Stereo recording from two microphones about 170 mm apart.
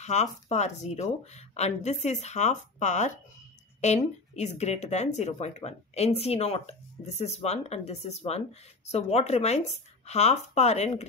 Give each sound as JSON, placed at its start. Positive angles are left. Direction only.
{"t": 0.0, "sound": "speech", "side_deg": 40}